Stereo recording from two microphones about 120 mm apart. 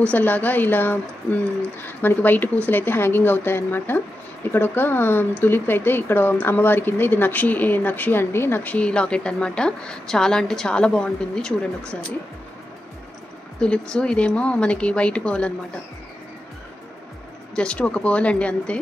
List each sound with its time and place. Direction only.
0.0 s a woman's voice: 15° left (ahead or behind)
13.6 s a woman's voice: 10° left (ahead or behind)
17.6 s a woman's voice: 10° left (ahead or behind)